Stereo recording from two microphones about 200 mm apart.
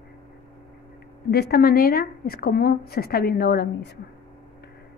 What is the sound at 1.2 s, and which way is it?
A woman's voice, 55° left (ahead or behind).